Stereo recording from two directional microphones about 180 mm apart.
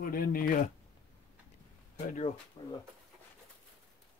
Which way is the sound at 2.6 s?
25° left (ahead or behind).